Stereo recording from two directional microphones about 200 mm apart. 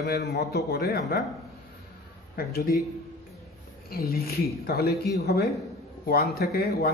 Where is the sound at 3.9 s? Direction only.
50° left (ahead or behind).